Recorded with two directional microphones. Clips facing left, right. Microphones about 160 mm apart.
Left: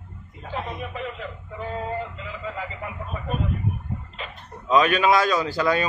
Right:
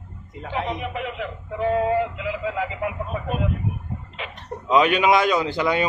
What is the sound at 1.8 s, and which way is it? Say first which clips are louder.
Music: right 8 dB; 85° right.